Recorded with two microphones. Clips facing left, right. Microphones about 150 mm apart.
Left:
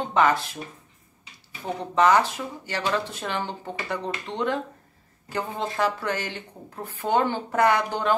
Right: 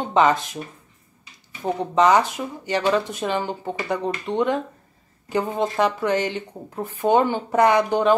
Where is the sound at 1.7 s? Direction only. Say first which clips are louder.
Right 3 dB; 20° right (ahead or behind).